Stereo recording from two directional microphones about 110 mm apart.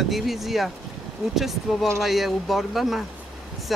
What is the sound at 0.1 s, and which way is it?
Speech, centre (ahead or behind).